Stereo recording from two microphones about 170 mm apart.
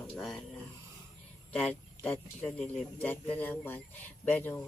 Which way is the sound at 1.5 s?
5° left (ahead or behind).